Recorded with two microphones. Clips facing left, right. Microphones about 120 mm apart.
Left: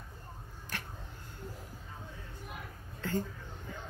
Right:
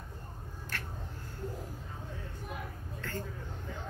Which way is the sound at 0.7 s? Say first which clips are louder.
Even; 15° left (ahead or behind).